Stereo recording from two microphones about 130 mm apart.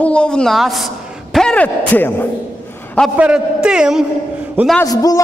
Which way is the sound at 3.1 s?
10° right (ahead or behind).